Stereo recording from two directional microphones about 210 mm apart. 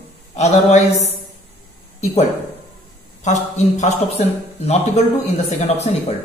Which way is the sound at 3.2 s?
35° left (ahead or behind).